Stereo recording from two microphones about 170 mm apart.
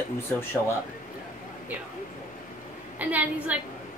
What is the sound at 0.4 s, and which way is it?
Speech, 15° left (ahead or behind).